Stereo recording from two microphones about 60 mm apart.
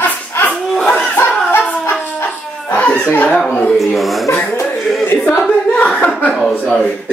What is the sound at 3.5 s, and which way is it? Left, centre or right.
Speech, centre.